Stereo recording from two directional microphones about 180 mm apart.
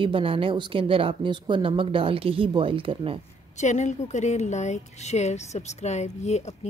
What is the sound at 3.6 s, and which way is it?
A woman's voice, 40° left (ahead or behind).